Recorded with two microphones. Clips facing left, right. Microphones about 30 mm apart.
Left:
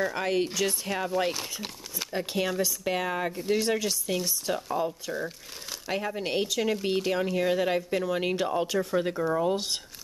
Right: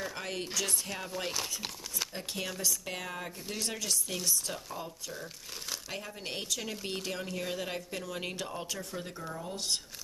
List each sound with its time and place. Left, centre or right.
0.1 s speech: left
2.1 s speech: centre
3.3 s speech: centre
9.1 s speech: left